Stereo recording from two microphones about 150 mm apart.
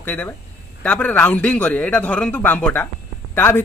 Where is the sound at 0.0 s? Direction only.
10° left (ahead or behind).